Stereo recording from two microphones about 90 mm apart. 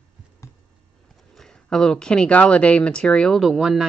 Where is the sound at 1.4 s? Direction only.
5° left (ahead or behind).